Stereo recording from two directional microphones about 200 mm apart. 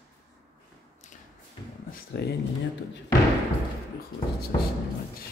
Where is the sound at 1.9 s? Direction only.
55° left (ahead or behind).